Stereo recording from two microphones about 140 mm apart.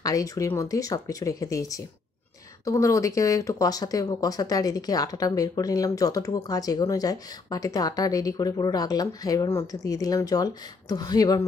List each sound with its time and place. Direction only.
0.0 s speech: 25° left (ahead or behind)